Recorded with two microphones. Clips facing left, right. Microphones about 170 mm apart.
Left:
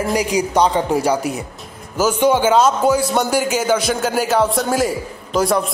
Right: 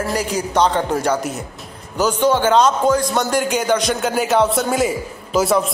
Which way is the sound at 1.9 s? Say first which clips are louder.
Left 1 dB; 10° left (ahead or behind).